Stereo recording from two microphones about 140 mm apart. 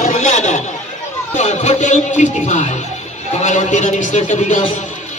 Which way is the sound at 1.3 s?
55° left (ahead or behind).